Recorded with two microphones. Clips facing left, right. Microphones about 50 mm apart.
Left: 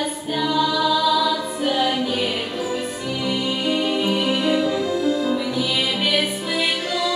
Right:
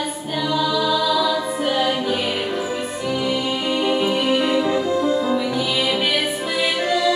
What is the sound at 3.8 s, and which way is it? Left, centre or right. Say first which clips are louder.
Music: right 2 dB; centre.